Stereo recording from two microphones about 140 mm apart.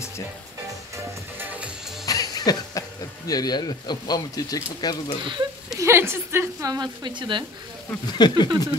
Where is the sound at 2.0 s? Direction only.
25° left (ahead or behind).